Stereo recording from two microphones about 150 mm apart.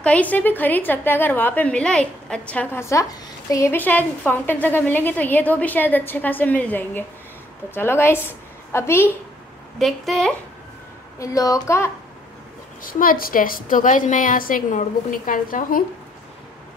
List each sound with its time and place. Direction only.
0.0 s a woman's voice: 10° left (ahead or behind)
9.8 s a woman's voice: centre (ahead or behind)
11.1 s a woman's voice: 20° left (ahead or behind)
12.8 s a woman's voice: 70° left (ahead or behind)